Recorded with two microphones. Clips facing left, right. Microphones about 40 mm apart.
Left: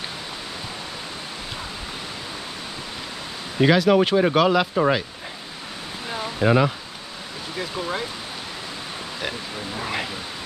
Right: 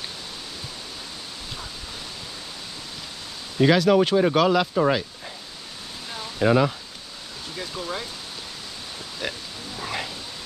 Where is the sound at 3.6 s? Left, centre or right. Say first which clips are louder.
Left 1 dB; centre.